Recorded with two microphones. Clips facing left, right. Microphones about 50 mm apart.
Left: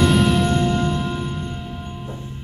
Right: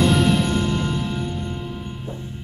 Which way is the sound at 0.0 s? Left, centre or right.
Centre.